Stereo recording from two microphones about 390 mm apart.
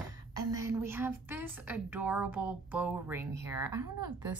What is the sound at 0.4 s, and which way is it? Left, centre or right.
A woman's voice, centre.